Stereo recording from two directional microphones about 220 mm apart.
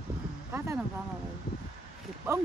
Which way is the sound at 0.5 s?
10° right (ahead or behind).